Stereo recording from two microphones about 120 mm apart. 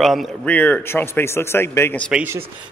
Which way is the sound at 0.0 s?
Centre (ahead or behind).